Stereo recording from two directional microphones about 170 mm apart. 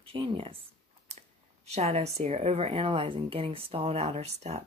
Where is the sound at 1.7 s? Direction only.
40° right (ahead or behind).